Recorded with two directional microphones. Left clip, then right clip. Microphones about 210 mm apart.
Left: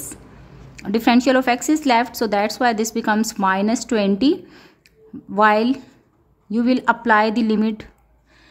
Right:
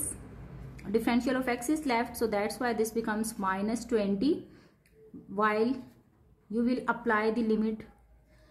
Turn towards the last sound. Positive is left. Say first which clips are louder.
# left 9 dB
turn(degrees=40)  # may be behind; listen again after turning